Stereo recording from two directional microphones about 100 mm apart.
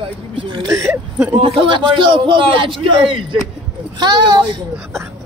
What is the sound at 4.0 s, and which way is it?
Speech, 50° right (ahead or behind).